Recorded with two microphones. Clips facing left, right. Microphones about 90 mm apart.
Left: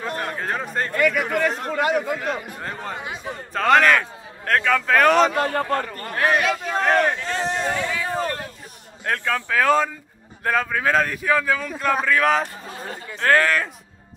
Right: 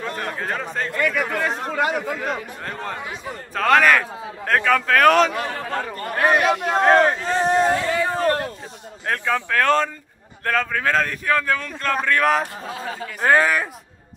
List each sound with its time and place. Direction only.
0.0 s a sound: 10° left (ahead or behind)
0.8 s a man's voice: 5° left (ahead or behind)
1.4 s a man's voice: 10° right (ahead or behind); by 3.0 s 5° left (ahead or behind)
3.0 s a man's voice: 20° left (ahead or behind)
3.5 s a man's voice: centre (ahead or behind)
5.4 s a man's voice: 55° left (ahead or behind)
6.1 s speech: 15° right (ahead or behind)
6.5 s speech: 60° right (ahead or behind)
6.9 s speech: 25° right (ahead or behind)
7.4 s a sound: 45° right (ahead or behind)
9.0 s a man's voice: 5° right (ahead or behind)
13.2 s speech: 15° right (ahead or behind)